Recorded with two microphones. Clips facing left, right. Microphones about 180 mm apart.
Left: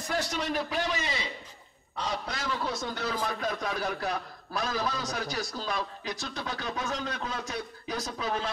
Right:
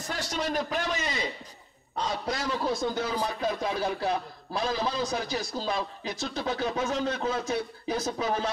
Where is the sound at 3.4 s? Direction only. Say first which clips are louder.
Right 3 dB; 25° right (ahead or behind).